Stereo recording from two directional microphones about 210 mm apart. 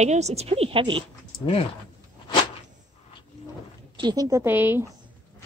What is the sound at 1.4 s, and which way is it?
Speech, 25° left (ahead or behind).